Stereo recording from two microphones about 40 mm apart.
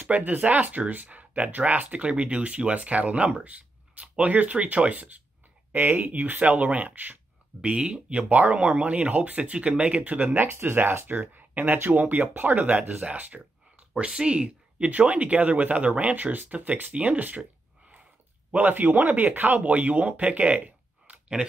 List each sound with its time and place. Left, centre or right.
0.1 s speech: right
3.4 s writing: right
4.2 s speech: right
5.7 s speech: right
7.6 s speech: right
10.3 s speech: right
14.9 s speech: right
18.5 s speech: right